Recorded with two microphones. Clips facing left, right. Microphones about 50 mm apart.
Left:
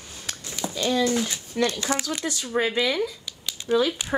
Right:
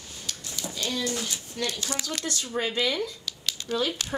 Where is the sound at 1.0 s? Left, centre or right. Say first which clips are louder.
Left 7 dB; left.